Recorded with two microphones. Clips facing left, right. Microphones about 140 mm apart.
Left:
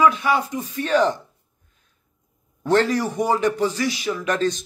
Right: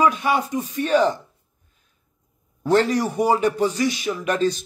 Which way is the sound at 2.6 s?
15° right (ahead or behind).